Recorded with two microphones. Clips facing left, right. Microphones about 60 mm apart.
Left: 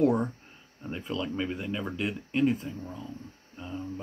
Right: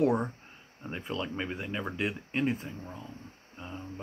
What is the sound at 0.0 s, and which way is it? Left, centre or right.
Speech, right.